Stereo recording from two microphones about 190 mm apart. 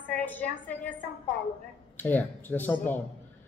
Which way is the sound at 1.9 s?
10° left (ahead or behind).